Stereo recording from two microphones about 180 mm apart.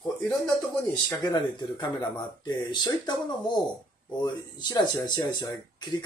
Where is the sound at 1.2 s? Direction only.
25° left (ahead or behind).